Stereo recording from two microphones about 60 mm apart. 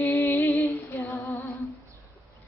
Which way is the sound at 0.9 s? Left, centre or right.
Left.